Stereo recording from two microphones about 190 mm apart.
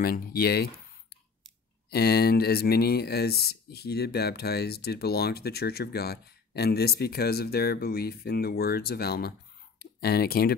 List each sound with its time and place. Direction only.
0.0 s speech: 50° left (ahead or behind)
1.9 s speech: 55° left (ahead or behind)